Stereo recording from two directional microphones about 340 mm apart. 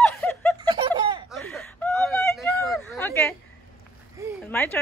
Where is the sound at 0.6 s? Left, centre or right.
Centre.